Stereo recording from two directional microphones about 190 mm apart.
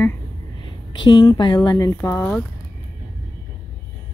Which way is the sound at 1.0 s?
20° left (ahead or behind).